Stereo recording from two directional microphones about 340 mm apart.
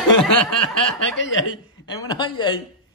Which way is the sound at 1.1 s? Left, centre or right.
Left.